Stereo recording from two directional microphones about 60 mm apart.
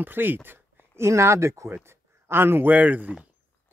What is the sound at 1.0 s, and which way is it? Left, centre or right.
Speech, right.